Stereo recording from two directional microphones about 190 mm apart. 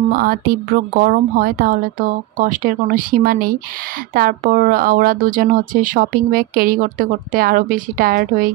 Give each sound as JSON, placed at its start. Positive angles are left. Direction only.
{"t": 0.1, "sound": "speech", "side_deg": -50}